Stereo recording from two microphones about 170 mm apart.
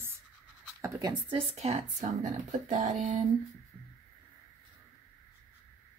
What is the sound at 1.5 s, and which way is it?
Speech, 40° right (ahead or behind).